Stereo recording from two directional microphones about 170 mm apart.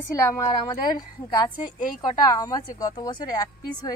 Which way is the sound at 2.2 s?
20° left (ahead or behind).